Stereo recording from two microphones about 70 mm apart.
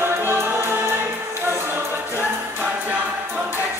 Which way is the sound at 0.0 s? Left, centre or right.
Right.